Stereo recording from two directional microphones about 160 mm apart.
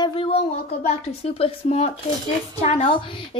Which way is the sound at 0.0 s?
35° left (ahead or behind).